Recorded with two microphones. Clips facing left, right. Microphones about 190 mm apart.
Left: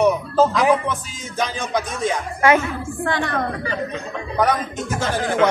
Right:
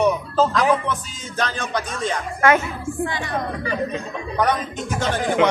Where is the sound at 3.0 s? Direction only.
65° left (ahead or behind).